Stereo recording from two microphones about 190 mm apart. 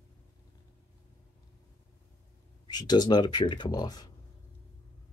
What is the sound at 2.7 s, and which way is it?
Speech, 20° left (ahead or behind).